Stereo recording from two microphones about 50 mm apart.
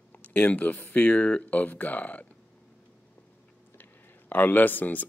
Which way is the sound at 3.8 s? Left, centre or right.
Left.